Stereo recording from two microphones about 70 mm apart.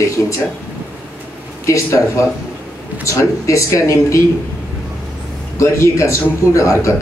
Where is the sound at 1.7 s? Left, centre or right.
Left.